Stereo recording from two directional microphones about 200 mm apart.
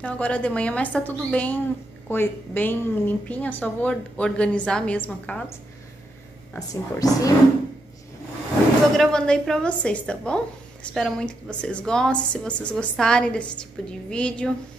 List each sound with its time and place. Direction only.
0.0 s a woman's voice: 5° left (ahead or behind)
8.9 s a woman's voice: centre (ahead or behind)